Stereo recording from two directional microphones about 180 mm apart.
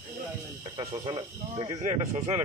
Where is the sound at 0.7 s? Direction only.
25° right (ahead or behind).